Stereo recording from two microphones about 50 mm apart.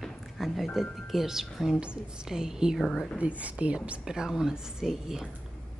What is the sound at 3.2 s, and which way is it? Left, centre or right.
Speech, right.